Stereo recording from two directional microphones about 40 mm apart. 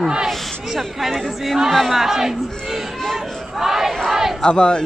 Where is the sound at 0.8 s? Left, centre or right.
Centre.